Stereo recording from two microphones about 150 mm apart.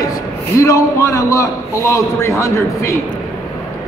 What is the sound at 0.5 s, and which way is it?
A man's voice, 20° left (ahead or behind).